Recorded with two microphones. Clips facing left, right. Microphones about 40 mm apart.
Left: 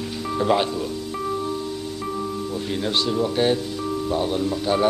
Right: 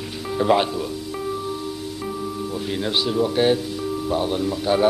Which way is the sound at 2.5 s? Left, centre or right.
Centre.